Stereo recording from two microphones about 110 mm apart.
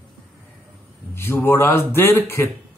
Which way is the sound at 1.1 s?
20° left (ahead or behind).